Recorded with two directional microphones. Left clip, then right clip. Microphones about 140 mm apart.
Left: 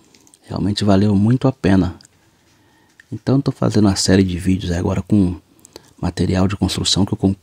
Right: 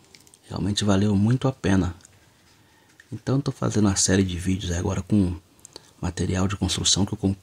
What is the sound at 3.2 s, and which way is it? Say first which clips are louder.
Speech: left 8 dB; 50° left (ahead or behind).